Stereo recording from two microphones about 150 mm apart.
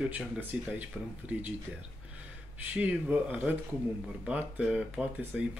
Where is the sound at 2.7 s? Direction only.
10° right (ahead or behind).